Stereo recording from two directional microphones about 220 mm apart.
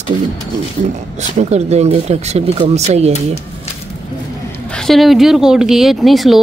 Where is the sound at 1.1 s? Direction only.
30° right (ahead or behind).